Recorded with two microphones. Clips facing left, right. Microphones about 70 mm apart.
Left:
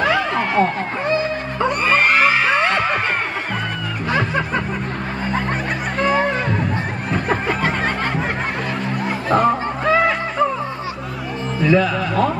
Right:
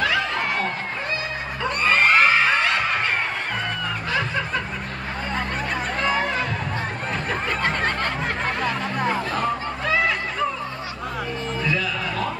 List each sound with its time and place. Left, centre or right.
0.0 s a sound: left
1.8 s music: centre
7.4 s snicker: centre
9.3 s music: left
11.6 s music: left